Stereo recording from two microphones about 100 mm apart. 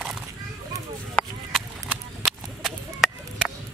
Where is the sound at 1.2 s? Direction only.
10° left (ahead or behind).